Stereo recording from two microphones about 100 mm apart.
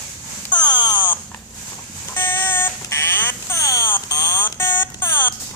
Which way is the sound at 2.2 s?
25° left (ahead or behind).